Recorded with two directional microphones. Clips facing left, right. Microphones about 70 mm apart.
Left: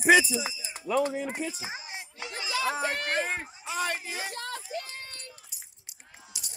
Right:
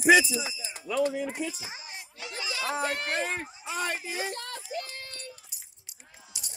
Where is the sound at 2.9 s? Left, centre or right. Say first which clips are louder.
Left 1 dB; left.